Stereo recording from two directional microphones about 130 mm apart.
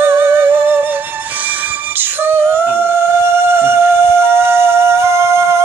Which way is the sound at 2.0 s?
15° right (ahead or behind).